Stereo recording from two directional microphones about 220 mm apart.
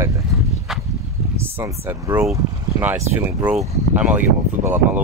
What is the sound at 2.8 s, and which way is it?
Speech, 10° right (ahead or behind).